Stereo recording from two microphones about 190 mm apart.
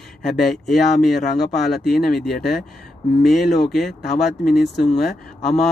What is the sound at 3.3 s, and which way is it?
Speech, centre (ahead or behind).